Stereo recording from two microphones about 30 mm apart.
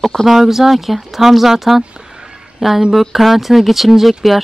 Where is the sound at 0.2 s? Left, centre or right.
Centre.